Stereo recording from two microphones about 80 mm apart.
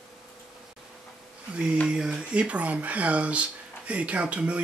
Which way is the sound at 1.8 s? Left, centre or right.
Centre.